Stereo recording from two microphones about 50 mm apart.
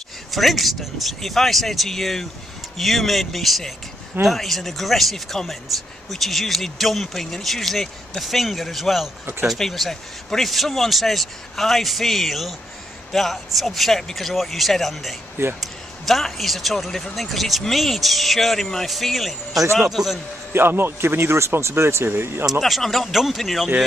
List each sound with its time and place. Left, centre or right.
0.3 s a man's voice: centre
9.2 s speech: right
9.6 s a man's voice: centre
20.5 s speech: right
22.6 s a man's voice: centre